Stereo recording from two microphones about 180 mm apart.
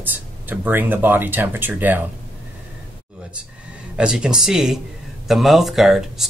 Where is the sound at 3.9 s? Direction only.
5° right (ahead or behind).